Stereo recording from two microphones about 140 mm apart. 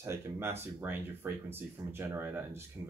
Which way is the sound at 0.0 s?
20° right (ahead or behind).